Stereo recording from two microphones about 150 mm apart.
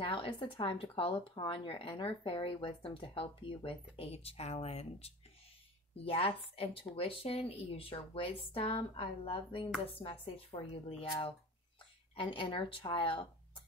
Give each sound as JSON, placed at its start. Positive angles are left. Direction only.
{"t": 0.0, "sound": "speech", "side_deg": 35}
{"t": 12.2, "sound": "speech", "side_deg": 35}